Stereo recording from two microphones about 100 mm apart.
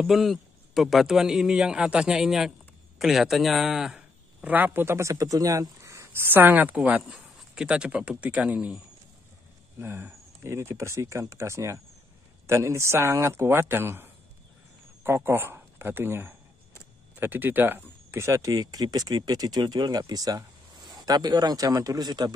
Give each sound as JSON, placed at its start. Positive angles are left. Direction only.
{"t": 0.0, "sound": "a man's voice", "side_deg": 0}